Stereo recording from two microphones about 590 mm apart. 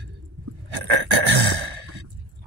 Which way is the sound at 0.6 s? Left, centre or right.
Right.